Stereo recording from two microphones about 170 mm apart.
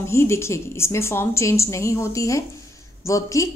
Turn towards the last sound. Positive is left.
turn(degrees=20)  # may be behind; listen again after turning